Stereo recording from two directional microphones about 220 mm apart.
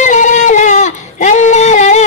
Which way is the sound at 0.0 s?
35° left (ahead or behind).